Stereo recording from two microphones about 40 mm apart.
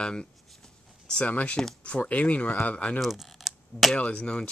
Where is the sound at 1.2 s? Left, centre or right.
Left.